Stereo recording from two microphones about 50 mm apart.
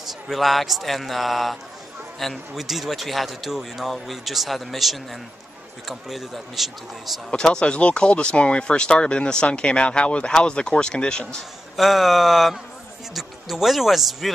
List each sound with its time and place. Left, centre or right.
0.0 s a man's voice: centre
7.2 s speech: centre
11.7 s a man's voice: centre